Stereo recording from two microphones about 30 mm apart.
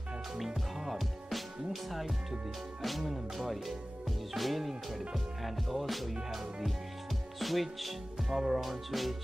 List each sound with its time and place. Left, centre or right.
0.7 s music: centre
1.3 s speech: centre
2.8 s music: centre
7.3 s music: centre
8.3 s speech: centre
8.5 s music: centre